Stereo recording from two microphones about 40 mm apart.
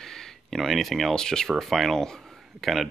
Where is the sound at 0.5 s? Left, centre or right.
Centre.